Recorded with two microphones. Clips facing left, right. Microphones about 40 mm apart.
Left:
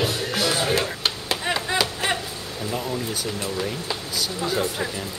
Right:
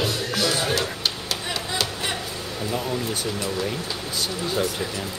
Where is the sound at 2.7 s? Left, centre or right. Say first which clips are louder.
Right 1 dB; centre.